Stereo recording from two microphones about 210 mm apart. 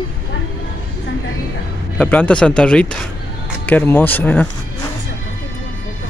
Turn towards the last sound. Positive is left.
turn(degrees=10)  # may be behind; listen again after turning